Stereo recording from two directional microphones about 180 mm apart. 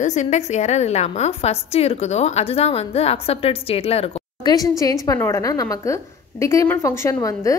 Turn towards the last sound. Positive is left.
turn(degrees=15)  # may be behind; listen again after turning